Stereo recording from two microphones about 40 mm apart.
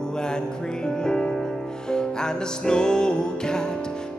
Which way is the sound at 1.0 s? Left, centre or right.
Centre.